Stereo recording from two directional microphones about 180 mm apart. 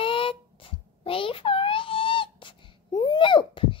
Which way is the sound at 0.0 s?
30° left (ahead or behind).